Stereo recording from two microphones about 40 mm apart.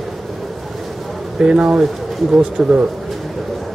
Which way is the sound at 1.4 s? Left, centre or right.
Right.